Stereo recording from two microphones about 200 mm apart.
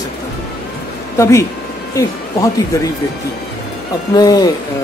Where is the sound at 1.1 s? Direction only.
15° left (ahead or behind).